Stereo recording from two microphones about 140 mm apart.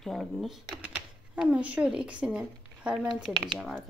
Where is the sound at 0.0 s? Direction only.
Centre (ahead or behind).